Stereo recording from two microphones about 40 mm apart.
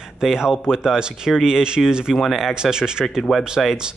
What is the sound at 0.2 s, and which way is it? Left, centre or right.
Speech, centre.